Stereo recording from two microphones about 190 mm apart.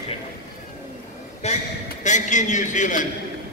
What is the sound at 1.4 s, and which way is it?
A man's voice, 35° left (ahead or behind).